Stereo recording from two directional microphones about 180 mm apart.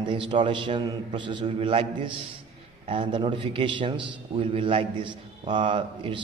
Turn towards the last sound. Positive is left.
turn(degrees=-25)  # may be behind; listen again after turning